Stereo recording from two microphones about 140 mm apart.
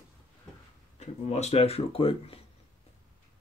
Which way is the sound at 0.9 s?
50° left (ahead or behind).